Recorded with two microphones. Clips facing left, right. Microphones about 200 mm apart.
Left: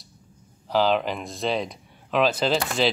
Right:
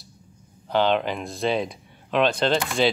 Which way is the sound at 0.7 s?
Centre (ahead or behind).